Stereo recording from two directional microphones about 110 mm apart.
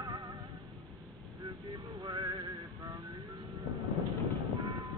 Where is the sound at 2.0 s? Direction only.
40° right (ahead or behind).